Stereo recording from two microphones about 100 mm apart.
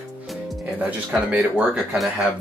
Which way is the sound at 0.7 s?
15° right (ahead or behind).